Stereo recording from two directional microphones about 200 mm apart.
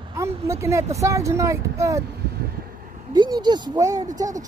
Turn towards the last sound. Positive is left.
turn(degrees=-20)  # may be behind; listen again after turning